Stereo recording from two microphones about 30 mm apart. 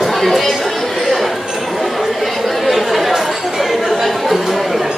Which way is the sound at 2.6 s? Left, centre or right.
Centre.